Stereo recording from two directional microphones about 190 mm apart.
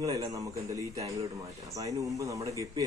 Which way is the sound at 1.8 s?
15° right (ahead or behind).